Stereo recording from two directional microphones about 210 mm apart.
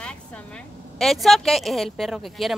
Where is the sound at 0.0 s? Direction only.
5° left (ahead or behind).